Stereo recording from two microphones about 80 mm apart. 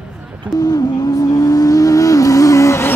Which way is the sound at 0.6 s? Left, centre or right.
Left.